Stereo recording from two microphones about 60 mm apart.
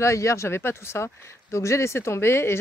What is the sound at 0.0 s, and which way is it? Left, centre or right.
Speech, left.